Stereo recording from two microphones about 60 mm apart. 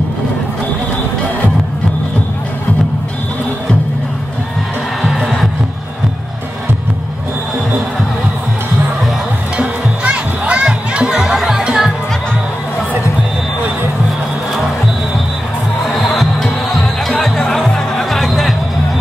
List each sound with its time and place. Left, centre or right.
9.6 s music: centre
15.9 s music: centre